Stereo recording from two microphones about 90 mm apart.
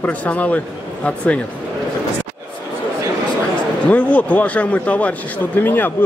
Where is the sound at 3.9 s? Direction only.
15° left (ahead or behind).